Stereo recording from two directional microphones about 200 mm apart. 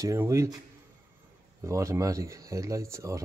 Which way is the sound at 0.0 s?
15° right (ahead or behind).